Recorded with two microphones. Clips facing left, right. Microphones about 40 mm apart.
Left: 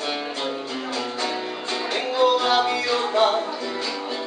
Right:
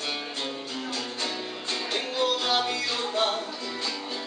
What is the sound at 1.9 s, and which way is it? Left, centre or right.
Music, left.